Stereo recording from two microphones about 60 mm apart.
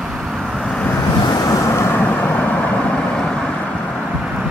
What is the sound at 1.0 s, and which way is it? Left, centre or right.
Vehicle, left.